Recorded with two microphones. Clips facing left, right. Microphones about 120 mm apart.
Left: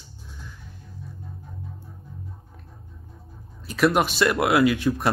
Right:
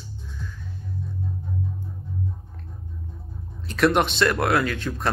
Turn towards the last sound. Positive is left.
turn(degrees=10)  # may be behind; listen again after turning